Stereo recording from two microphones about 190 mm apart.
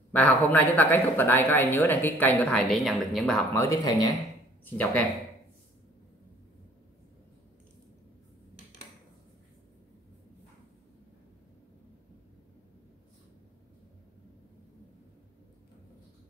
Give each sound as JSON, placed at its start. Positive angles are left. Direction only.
{"t": 0.1, "sound": "speech", "side_deg": 5}
{"t": 3.5, "sound": "speech", "side_deg": 20}
{"t": 4.6, "sound": "speech", "side_deg": 10}